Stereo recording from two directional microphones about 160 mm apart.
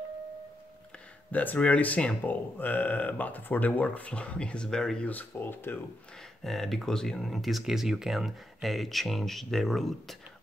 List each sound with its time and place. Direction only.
1.3 s speech: 10° left (ahead or behind)
6.4 s speech: centre (ahead or behind)